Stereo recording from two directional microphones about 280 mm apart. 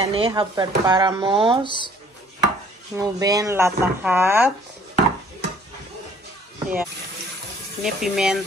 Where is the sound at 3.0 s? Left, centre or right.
Centre.